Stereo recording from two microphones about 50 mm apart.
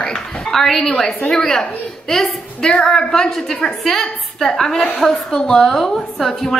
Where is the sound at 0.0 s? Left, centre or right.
Centre.